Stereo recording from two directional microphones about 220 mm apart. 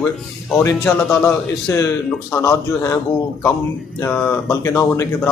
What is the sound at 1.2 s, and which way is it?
Speech, 15° left (ahead or behind).